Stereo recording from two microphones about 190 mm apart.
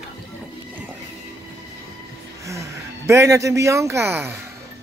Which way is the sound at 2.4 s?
15° right (ahead or behind).